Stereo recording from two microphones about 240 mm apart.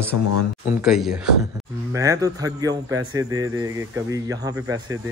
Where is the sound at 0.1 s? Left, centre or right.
Left.